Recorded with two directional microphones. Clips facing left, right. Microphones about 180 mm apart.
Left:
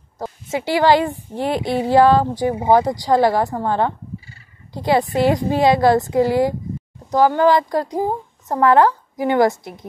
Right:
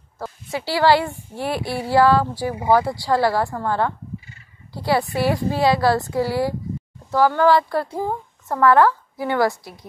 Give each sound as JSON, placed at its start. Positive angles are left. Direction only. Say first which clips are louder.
{"t": 0.2, "sound": "a woman's voice", "louder": "left 4 dB", "side_deg": 20}